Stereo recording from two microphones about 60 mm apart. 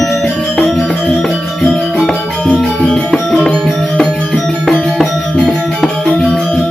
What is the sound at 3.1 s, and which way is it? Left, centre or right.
Music, centre.